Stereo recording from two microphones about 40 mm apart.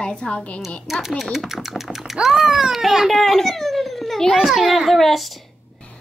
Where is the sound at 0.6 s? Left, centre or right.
Centre.